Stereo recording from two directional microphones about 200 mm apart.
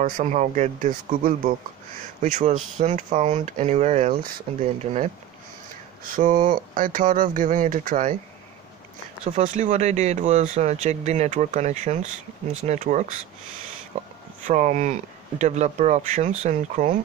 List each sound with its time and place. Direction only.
0.0 s speech: 35° right (ahead or behind)
6.0 s speech: 45° right (ahead or behind)
9.2 s speech: 35° right (ahead or behind)
13.9 s a sound: 35° right (ahead or behind)
14.4 s speech: 35° right (ahead or behind)